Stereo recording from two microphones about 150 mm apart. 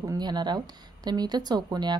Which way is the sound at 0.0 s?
25° right (ahead or behind).